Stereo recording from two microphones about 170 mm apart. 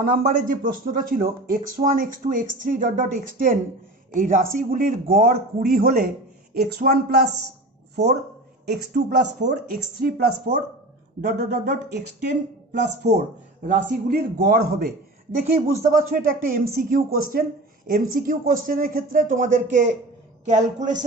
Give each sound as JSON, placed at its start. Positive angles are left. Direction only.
{"t": 0.0, "sound": "speech", "side_deg": -50}
{"t": 9.4, "sound": "speech", "side_deg": -45}
{"t": 10.0, "sound": "speech", "side_deg": -65}
{"t": 13.6, "sound": "speech", "side_deg": -50}
{"t": 16.2, "sound": "speech", "side_deg": -55}